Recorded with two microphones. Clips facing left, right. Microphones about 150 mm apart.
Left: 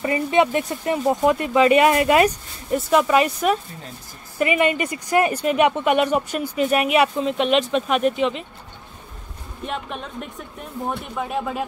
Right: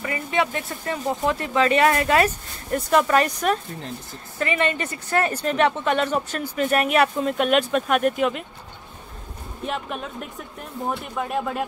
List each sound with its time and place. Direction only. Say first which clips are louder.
0.0 s speech: left 6 dB; 25° left (ahead or behind); by 8.5 s 5° right (ahead or behind)
9.6 s speech: right 1 dB; centre (ahead or behind)